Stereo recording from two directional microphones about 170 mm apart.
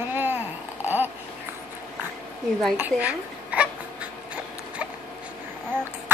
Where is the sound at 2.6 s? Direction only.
5° right (ahead or behind).